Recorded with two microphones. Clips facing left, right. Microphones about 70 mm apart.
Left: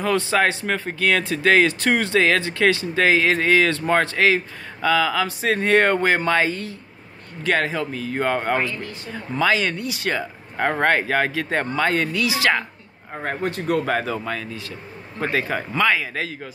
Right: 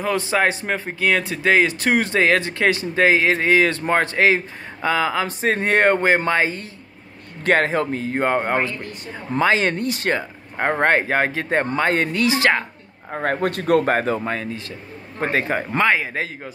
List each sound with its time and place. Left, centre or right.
0.0 s speech: centre
7.4 s speech: right
10.1 s speech: right
13.1 s a man's voice: right
13.8 s speech: right